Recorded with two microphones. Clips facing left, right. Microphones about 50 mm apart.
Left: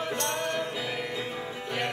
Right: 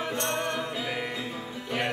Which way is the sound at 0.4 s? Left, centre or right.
Centre.